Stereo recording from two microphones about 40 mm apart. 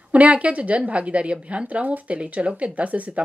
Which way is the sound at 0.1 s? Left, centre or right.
Right.